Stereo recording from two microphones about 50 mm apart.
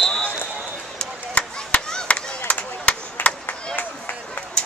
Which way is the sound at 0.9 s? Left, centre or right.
Left.